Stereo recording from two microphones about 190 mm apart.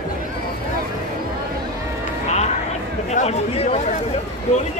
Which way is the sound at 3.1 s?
35° left (ahead or behind).